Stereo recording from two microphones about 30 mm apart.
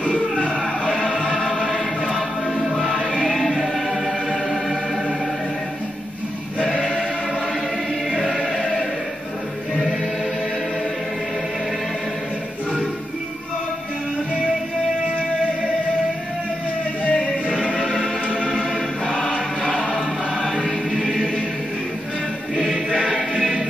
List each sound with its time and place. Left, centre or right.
0.0 s music: left
0.8 s music: left
1.4 s music: centre
17.1 s music: left
19.8 s music: left
20.9 s music: centre